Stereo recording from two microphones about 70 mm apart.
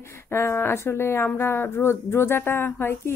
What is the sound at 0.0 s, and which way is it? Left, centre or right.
A woman's voice, left.